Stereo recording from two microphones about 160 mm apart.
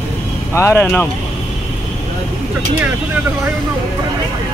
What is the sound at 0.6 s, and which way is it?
Speech, 15° left (ahead or behind).